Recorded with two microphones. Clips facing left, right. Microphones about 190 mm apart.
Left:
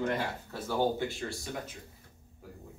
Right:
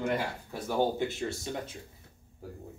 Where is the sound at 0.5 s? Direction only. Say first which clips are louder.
Right 1 dB; 15° right (ahead or behind).